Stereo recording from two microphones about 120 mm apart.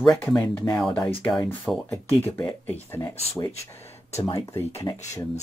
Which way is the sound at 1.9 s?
15° left (ahead or behind).